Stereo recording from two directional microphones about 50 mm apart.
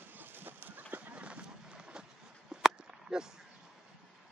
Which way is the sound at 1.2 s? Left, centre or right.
Right.